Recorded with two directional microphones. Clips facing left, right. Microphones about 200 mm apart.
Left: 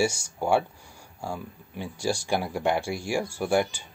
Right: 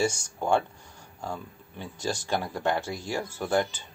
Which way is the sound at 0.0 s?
10° left (ahead or behind).